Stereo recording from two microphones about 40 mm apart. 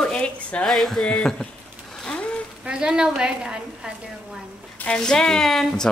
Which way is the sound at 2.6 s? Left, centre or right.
Right.